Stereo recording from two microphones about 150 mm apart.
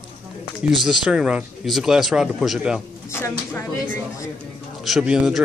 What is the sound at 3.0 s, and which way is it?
Speech, 20° left (ahead or behind).